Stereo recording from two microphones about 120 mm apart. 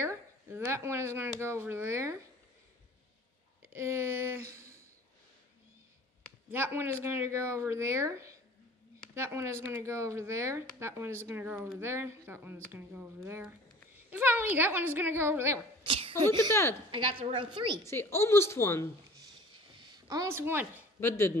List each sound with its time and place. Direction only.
0.0 s speech: 20° right (ahead or behind)
3.6 s speech: 20° right (ahead or behind)
6.5 s a child's voice: 20° right (ahead or behind)
15.8 s a sound: 45° right (ahead or behind)
16.9 s a woman's voice: 45° right (ahead or behind)
17.8 s speech: 20° left (ahead or behind)
19.7 s a sound: 40° right (ahead or behind)
20.2 s speech: 20° right (ahead or behind)